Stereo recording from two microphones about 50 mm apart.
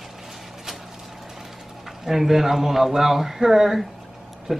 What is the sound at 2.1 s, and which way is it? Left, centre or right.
Speech, centre.